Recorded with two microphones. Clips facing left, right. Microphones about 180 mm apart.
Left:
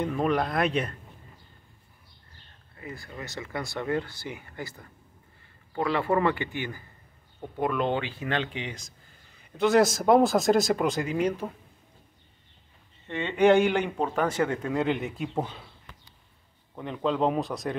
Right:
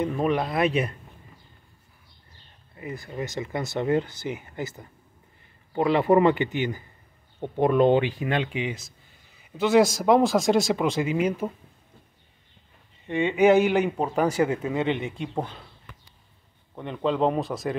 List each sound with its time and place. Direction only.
0.0 s speech: 5° right (ahead or behind)
2.7 s speech: 20° right (ahead or behind)
7.8 s speech: 15° right (ahead or behind)
13.0 s speech: 15° right (ahead or behind); by 15.7 s 5° left (ahead or behind)
16.7 s speech: centre (ahead or behind)